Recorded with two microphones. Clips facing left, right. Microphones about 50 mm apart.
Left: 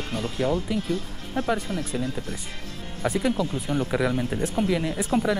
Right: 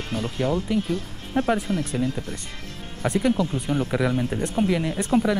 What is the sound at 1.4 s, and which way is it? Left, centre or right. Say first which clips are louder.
Speech: right 4 dB; right.